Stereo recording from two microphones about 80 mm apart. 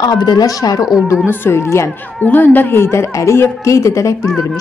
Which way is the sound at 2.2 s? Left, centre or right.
Left.